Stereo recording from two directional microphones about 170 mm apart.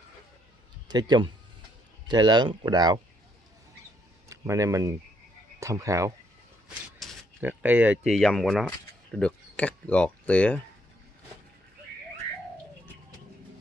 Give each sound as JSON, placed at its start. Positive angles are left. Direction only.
{"t": 0.8, "sound": "speech", "side_deg": -25}
{"t": 4.3, "sound": "speech", "side_deg": -20}
{"t": 7.0, "sound": "a sound", "side_deg": 0}
{"t": 7.3, "sound": "speech", "side_deg": -10}